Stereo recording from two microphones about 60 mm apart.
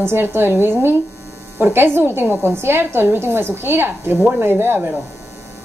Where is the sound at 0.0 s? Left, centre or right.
Right.